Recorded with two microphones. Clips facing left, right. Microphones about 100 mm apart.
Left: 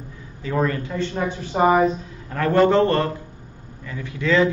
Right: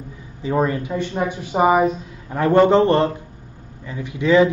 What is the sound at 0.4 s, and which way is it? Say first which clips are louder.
Speech: right 3 dB; 20° right (ahead or behind).